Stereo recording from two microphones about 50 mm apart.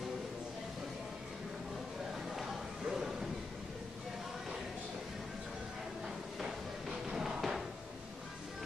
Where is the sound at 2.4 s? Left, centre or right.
Centre.